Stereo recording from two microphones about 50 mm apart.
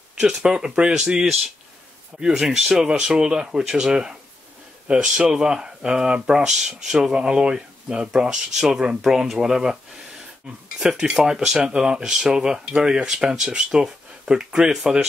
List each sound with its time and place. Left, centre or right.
0.1 s speech: centre
10.8 s speech: centre